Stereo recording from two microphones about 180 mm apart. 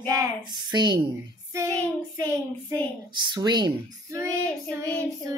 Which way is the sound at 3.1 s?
25° right (ahead or behind).